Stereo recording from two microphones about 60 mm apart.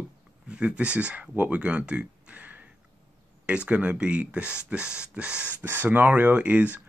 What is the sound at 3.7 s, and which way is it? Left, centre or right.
Speech, centre.